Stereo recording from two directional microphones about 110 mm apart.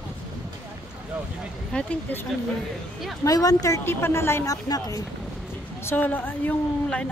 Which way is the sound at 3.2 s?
30° left (ahead or behind).